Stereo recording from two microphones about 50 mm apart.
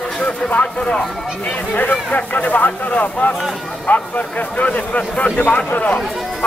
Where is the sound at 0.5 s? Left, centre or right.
Left.